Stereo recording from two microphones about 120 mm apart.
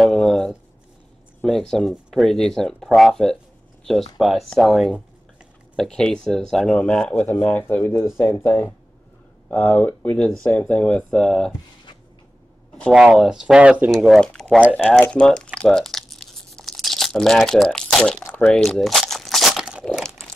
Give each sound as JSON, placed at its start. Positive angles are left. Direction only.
{"t": 0.0, "sound": "a sound", "side_deg": 0}
{"t": 1.4, "sound": "speech", "side_deg": 5}
{"t": 12.9, "sound": "speech", "side_deg": -5}
{"t": 14.8, "sound": "crumpling", "side_deg": 10}